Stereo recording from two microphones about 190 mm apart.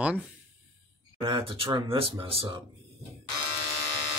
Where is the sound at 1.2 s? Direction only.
30° right (ahead or behind).